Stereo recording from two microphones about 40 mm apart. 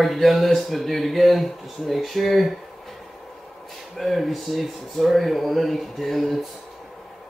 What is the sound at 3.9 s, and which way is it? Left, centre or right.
Speech, centre.